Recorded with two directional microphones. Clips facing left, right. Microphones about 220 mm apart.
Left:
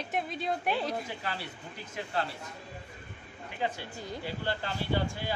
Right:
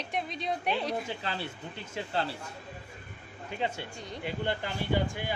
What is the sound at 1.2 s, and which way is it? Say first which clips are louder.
Speech: right 2 dB; 25° right (ahead or behind).